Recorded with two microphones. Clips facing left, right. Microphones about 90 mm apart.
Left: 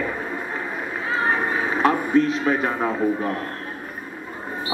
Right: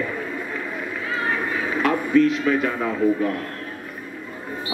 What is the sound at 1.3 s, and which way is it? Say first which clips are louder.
A man's voice: left 2 dB; 30° left (ahead or behind).